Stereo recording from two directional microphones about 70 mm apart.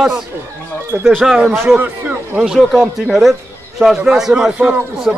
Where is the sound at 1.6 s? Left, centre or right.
Right.